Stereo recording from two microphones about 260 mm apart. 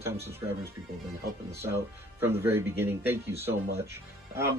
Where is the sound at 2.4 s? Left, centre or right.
Centre.